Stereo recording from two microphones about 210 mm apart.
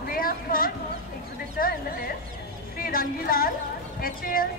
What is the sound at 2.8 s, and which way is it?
Music, 45° left (ahead or behind).